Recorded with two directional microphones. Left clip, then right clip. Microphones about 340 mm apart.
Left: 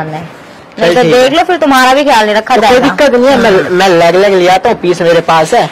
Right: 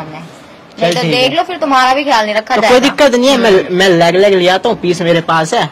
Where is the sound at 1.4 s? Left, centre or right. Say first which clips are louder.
Left 4 dB; centre.